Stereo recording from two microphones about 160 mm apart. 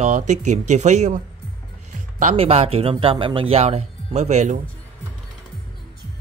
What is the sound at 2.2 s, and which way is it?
A man's voice, 40° right (ahead or behind).